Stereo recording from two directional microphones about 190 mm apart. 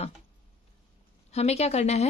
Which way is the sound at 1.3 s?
35° left (ahead or behind).